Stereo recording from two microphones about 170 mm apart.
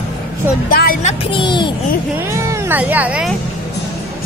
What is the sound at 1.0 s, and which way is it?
Music, 30° left (ahead or behind).